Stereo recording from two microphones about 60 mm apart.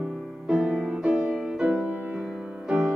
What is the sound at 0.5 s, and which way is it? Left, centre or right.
Music, centre.